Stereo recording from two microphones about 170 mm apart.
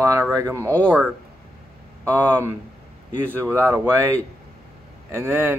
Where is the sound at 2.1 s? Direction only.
15° right (ahead or behind).